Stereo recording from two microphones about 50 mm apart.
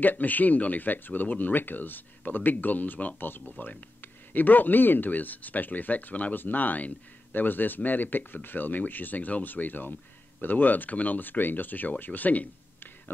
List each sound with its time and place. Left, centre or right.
0.0 s speech: left
3.2 s speech: left